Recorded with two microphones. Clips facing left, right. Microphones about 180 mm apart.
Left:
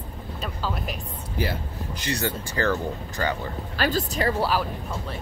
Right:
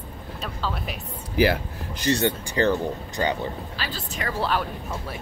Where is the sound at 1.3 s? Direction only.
80° right.